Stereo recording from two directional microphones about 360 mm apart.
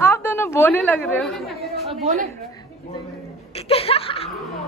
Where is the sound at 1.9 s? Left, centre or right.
Centre.